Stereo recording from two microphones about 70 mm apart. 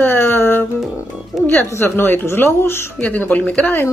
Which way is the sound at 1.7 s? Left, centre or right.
Left.